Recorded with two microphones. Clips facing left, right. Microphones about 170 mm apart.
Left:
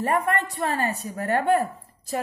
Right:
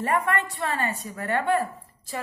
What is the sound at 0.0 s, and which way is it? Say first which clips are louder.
A woman's voice: left 1 dB; 35° left (ahead or behind).